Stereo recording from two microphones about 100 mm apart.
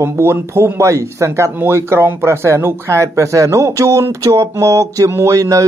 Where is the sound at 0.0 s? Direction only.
25° right (ahead or behind).